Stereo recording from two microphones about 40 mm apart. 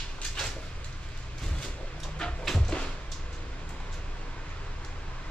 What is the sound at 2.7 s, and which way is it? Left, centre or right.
Cupboard open or close, left.